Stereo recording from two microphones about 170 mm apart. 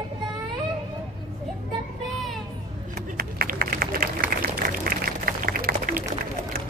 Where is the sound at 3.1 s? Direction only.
60° right (ahead or behind).